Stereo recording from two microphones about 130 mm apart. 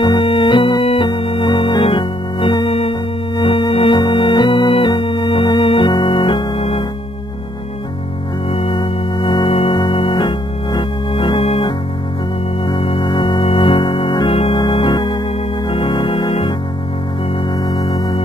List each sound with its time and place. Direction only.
0.0 s organ: 40° left (ahead or behind)
8.5 s organ: 45° left (ahead or behind)
17.6 s music: 35° left (ahead or behind)